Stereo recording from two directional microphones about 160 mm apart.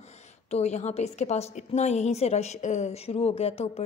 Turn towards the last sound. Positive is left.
turn(degrees=40)  # may be behind; listen again after turning